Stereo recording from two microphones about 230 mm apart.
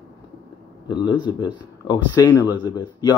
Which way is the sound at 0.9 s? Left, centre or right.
Centre.